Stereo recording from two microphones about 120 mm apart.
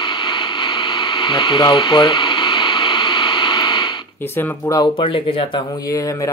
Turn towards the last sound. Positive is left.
turn(degrees=30)  # may be behind; listen again after turning